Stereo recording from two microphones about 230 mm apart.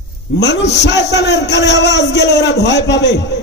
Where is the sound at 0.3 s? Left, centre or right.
Left.